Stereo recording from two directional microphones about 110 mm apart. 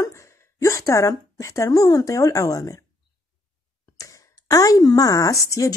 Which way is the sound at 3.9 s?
30° left (ahead or behind).